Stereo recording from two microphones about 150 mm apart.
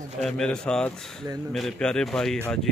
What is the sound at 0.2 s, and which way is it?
Speech, 5° left (ahead or behind).